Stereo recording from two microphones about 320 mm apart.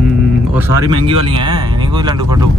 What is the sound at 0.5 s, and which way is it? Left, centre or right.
Speech, centre.